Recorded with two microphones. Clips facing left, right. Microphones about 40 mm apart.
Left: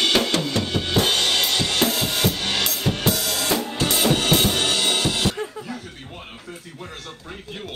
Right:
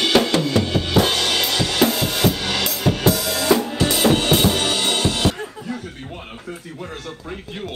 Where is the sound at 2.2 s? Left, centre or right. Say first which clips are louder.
Right 6 dB; right.